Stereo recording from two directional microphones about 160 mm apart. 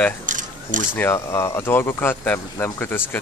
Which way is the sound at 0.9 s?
15° left (ahead or behind).